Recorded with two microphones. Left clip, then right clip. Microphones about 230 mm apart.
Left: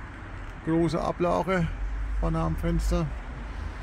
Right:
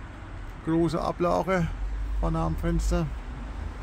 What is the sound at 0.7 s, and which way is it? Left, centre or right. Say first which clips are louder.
Speech: even; centre.